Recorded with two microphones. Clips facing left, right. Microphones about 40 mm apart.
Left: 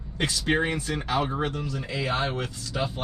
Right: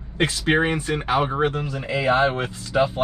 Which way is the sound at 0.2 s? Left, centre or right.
Right.